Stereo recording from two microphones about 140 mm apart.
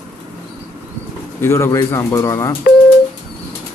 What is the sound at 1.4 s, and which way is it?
Speech, 20° left (ahead or behind).